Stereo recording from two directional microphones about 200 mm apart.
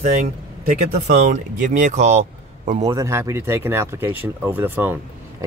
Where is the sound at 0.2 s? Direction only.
35° right (ahead or behind).